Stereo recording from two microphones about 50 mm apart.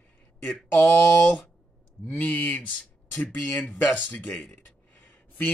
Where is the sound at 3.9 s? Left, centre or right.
Left.